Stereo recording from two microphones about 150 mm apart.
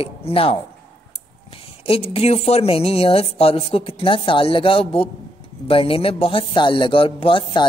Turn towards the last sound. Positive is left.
turn(degrees=35)  # may be behind; listen again after turning